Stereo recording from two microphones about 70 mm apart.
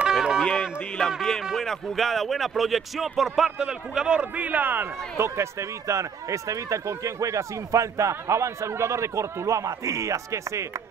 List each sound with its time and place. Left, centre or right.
0.0 s music: centre
0.5 s a sound: centre
1.6 s speech: centre; by 10.6 s right